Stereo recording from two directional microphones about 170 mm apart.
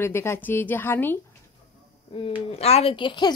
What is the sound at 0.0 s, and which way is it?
A woman's voice, 15° left (ahead or behind).